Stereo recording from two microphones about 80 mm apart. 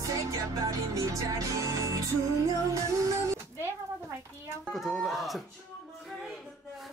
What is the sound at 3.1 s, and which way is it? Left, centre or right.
Music, right.